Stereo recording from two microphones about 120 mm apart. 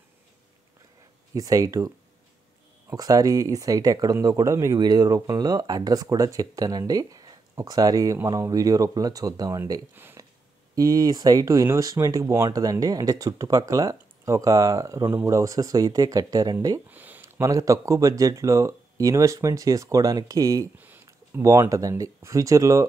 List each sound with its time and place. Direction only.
1.3 s speech: 30° right (ahead or behind)
10.2 s a sound: 30° right (ahead or behind)
10.7 s speech: 30° right (ahead or behind)
16.9 s a sound: 15° right (ahead or behind)
17.4 s speech: 30° right (ahead or behind)
20.7 s speech: 15° right (ahead or behind)